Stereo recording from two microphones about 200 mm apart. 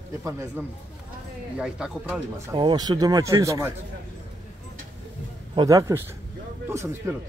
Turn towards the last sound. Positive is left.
turn(degrees=-15)  # may be behind; listen again after turning